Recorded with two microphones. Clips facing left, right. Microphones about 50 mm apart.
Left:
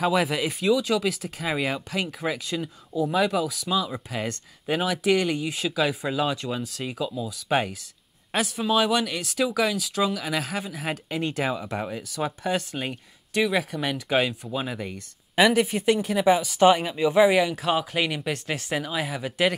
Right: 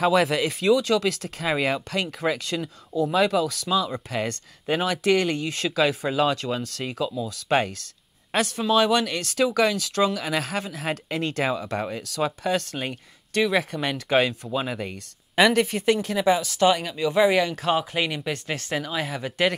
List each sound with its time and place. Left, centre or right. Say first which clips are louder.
0.0 s speech: right 3 dB; centre
18.3 s speech: even; centre